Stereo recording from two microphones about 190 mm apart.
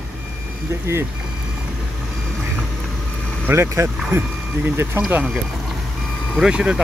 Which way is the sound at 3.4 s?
15° right (ahead or behind).